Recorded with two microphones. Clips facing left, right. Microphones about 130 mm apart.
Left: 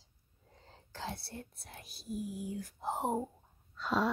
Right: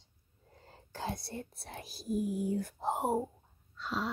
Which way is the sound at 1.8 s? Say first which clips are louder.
Right 6 dB; 40° right (ahead or behind).